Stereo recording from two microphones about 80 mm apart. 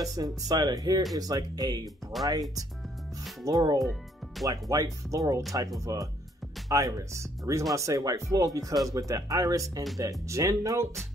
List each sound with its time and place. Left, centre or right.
0.0 s speech: right
2.1 s speech: centre
3.4 s speech: right